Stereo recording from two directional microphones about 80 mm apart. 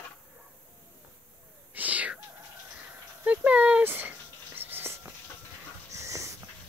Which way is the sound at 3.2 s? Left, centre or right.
Centre.